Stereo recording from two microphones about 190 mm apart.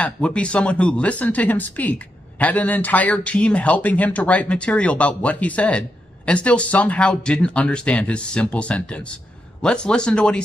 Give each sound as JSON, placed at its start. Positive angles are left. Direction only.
{"t": 0.0, "sound": "speech", "side_deg": 5}